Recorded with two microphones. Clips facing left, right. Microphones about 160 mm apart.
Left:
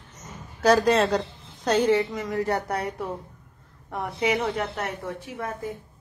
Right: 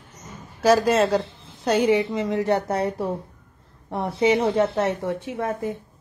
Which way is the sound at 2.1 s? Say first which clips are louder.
Right 4 dB; 25° right (ahead or behind).